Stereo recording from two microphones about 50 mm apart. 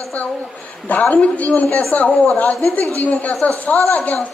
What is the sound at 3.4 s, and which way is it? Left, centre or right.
Speech, left.